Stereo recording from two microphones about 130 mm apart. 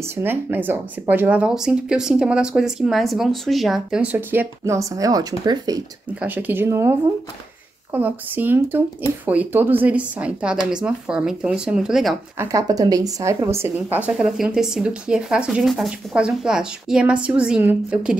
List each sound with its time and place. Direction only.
0.0 s speech: 15° right (ahead or behind)
6.1 s speech: 15° right (ahead or behind)
12.4 s speech: 25° right (ahead or behind)